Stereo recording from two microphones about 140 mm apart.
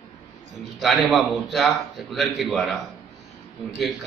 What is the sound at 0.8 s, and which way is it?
Speech, centre (ahead or behind).